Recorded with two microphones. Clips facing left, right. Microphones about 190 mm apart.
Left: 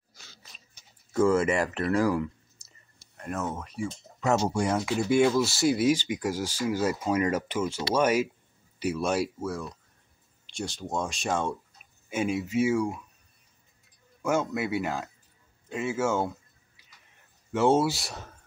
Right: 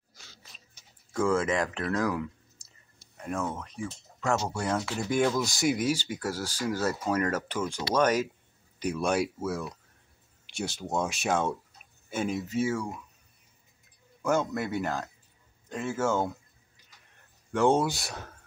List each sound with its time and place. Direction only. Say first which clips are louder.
1.1 s speech: left 3 dB; 10° left (ahead or behind)
5.4 s speech: left 4 dB; 15° right (ahead or behind)
6.0 s speech: left 3 dB; 10° left (ahead or behind)
12.1 s speech: left 2 dB; 10° left (ahead or behind)
14.2 s speech: even; 5° left (ahead or behind)
17.5 s speech: left 1 dB; 5° left (ahead or behind)